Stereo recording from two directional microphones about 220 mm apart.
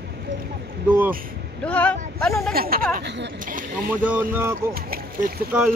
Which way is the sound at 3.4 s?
40° right (ahead or behind).